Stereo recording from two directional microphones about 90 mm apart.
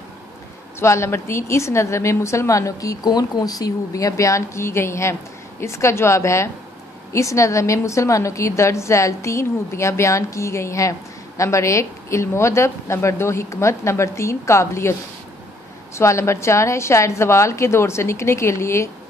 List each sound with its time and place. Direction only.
0.7 s a woman's voice: 30° left (ahead or behind)